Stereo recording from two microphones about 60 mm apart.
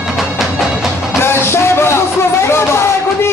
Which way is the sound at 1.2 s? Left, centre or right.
Left.